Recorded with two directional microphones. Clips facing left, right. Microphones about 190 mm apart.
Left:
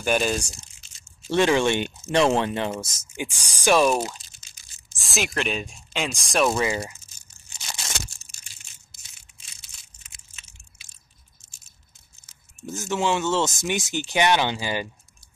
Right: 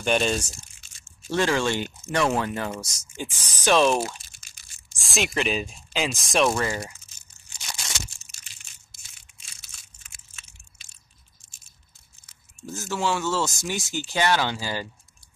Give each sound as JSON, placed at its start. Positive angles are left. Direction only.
{"t": 0.0, "sound": "speech", "side_deg": 5}
{"t": 1.2, "sound": "speech", "side_deg": 20}
{"t": 6.5, "sound": "speech", "side_deg": 15}
{"t": 12.3, "sound": "speech", "side_deg": 20}